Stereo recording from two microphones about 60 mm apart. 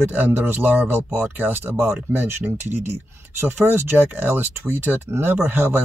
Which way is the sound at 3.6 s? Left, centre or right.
Right.